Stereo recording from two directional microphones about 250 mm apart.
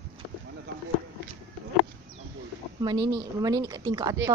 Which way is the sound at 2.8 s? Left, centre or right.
Centre.